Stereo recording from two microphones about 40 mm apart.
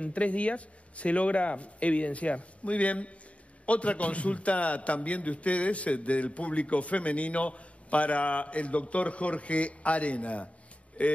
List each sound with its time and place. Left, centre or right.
0.0 s a man's voice: left